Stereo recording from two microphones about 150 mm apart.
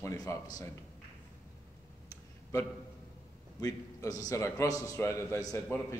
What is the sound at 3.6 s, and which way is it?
Speech, 25° left (ahead or behind).